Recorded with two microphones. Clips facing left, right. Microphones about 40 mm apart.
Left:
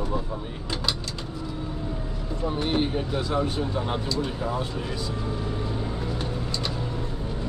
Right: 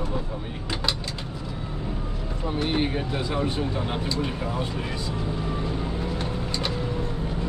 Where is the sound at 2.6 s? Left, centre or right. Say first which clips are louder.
Right 1 dB; centre.